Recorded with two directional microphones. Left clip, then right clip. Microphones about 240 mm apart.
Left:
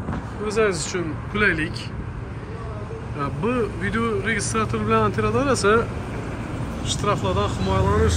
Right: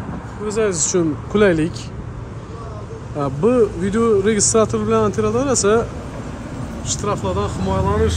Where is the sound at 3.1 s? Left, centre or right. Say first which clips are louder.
Right 8 dB; centre.